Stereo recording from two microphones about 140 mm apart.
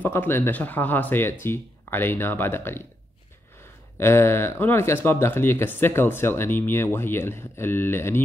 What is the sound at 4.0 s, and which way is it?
Speech, 20° left (ahead or behind).